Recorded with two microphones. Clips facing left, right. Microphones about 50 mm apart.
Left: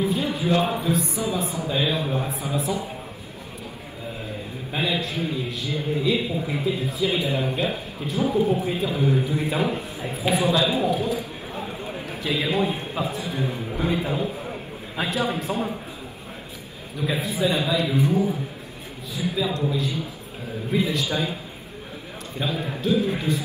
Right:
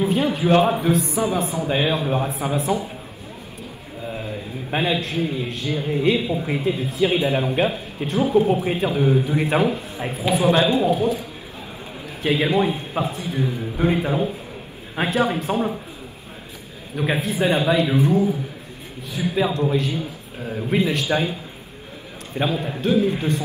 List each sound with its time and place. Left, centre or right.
0.0 s a sound: right
0.7 s a man's voice: right
4.6 s a man's voice: right
12.2 s a man's voice: right
16.9 s a man's voice: right
19.1 s a man's voice: right
22.4 s a man's voice: right